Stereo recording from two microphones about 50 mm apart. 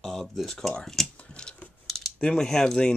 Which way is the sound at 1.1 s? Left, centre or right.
Left.